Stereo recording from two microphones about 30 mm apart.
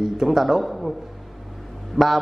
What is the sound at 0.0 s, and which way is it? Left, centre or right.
Speech, centre.